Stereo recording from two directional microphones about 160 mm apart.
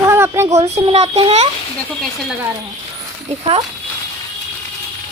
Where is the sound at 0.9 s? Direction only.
40° right (ahead or behind).